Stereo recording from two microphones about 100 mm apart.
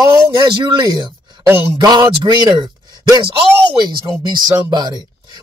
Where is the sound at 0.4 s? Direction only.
50° right (ahead or behind).